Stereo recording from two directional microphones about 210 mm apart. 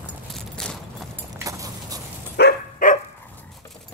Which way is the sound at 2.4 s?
45° left (ahead or behind).